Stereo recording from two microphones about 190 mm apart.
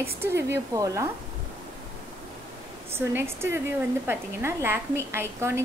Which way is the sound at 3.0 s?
10° right (ahead or behind).